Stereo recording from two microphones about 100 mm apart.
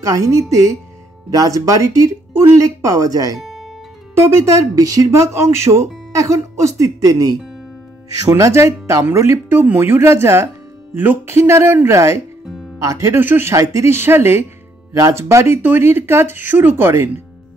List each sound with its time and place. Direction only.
0.0 s speech: 35° right (ahead or behind)
3.3 s guitar: 5° right (ahead or behind)
4.1 s speech: 25° right (ahead or behind)